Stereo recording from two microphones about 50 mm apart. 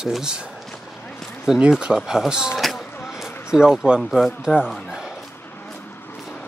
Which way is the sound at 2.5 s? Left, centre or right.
Centre.